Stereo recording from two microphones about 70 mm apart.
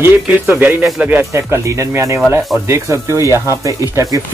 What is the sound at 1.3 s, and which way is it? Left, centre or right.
Speech, right.